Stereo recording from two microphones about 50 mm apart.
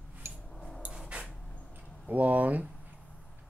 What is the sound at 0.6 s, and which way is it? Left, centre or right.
Dog, centre.